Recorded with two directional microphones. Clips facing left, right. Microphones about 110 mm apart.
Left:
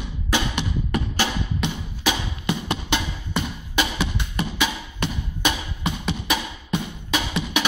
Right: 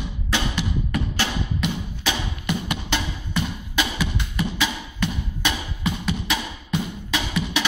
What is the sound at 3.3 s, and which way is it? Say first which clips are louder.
Music: left 1 dB; 25° left (ahead or behind).